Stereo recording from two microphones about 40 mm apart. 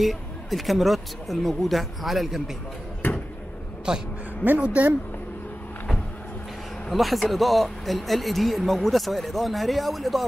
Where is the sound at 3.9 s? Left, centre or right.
Right.